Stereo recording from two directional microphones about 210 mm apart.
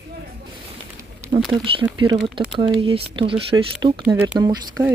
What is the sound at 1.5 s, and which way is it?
Speech, 25° right (ahead or behind).